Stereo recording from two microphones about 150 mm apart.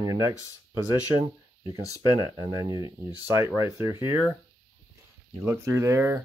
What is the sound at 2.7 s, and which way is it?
Speech, 25° right (ahead or behind).